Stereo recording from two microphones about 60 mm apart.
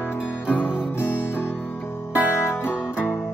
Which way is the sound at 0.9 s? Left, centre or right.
Left.